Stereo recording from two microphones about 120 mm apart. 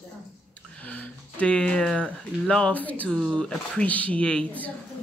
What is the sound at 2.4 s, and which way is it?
Speech, 10° left (ahead or behind).